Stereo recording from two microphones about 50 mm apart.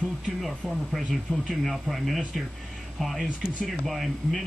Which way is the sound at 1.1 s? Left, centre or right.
Centre.